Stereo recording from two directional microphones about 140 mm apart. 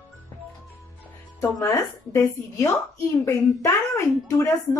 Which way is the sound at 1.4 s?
20° left (ahead or behind).